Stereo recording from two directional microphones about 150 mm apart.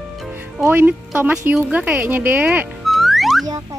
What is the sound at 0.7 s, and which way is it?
Speech, 15° right (ahead or behind).